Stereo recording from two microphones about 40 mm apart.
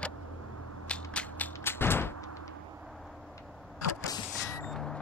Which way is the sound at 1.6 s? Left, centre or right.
Left.